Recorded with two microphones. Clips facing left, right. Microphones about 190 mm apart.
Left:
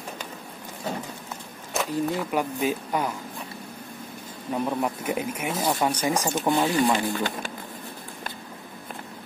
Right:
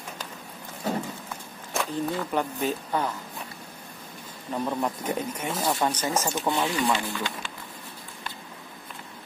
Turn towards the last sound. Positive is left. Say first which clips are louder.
# left 5 dB
turn(degrees=50)  # may be behind; listen again after turning